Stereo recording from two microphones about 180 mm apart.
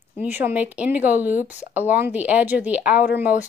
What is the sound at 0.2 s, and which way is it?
A woman's voice, 10° right (ahead or behind).